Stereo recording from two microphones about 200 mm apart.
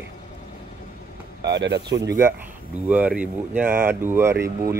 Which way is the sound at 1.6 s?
60° right (ahead or behind).